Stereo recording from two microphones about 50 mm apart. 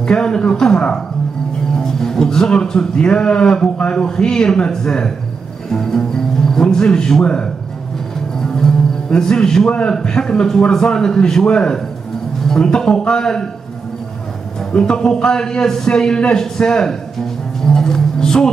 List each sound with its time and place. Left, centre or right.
0.0 s a man's voice: centre
8.4 s music: centre
10.0 s a man's voice: centre
14.7 s a man's voice: centre
17.6 s music: centre